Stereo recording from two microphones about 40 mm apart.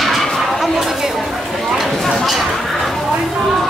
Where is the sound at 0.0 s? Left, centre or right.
Centre.